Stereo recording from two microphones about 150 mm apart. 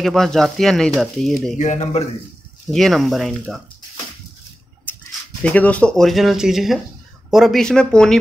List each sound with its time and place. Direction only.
0.0 s speech: centre (ahead or behind)
1.6 s speech: 50° left (ahead or behind)
2.7 s speech: centre (ahead or behind)
5.4 s speech: 10° left (ahead or behind)